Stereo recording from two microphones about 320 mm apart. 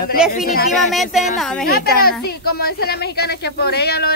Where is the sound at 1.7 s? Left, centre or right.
Left.